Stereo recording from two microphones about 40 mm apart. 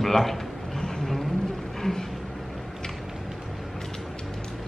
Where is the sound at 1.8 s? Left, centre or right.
Centre.